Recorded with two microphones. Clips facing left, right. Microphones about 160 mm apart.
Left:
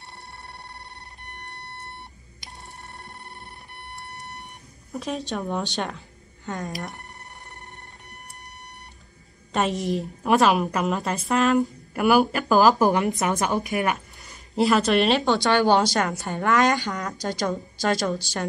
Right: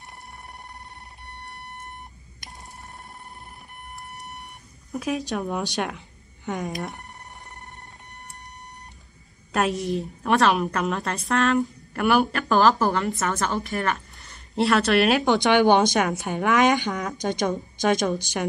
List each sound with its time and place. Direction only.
4.9 s a woman's voice: 5° right (ahead or behind)
9.5 s a woman's voice: centre (ahead or behind)
12.7 s a woman's voice: 15° left (ahead or behind)
14.2 s speech: 5° left (ahead or behind)
15.2 s a woman's voice: 20° right (ahead or behind)